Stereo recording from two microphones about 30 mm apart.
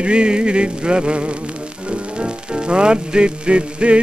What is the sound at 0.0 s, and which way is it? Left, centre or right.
Music, right.